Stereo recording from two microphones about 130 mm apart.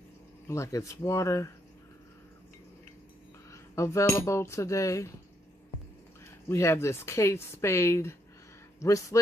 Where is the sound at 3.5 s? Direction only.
20° left (ahead or behind).